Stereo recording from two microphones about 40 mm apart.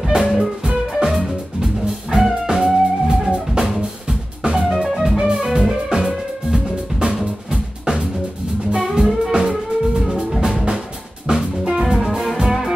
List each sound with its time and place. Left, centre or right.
0.0 s music: centre
3.6 s music: centre
4.4 s music: centre